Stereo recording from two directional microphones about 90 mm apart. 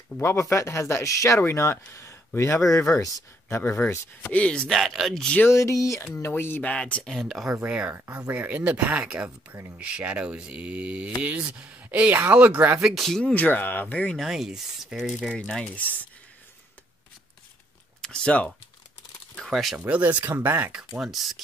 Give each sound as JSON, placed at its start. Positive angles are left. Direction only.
{"t": 0.2, "sound": "speech", "side_deg": 30}
{"t": 4.2, "sound": "speech", "side_deg": 15}
{"t": 5.5, "sound": "speech", "side_deg": 35}
{"t": 6.7, "sound": "speech", "side_deg": 10}
{"t": 7.5, "sound": "speech", "side_deg": -10}
{"t": 12.8, "sound": "speech", "side_deg": 0}
{"t": 13.2, "sound": "speech", "side_deg": 15}
{"t": 14.1, "sound": "speech", "side_deg": -5}
{"t": 15.3, "sound": "speech", "side_deg": 10}
{"t": 18.0, "sound": "speech", "side_deg": 10}
{"t": 19.3, "sound": "a sound", "side_deg": 0}
{"t": 19.9, "sound": "speech", "side_deg": -15}
{"t": 21.0, "sound": "speech", "side_deg": 0}